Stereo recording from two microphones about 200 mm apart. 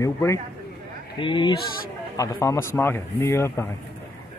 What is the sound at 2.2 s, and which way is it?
Speech, 15° left (ahead or behind).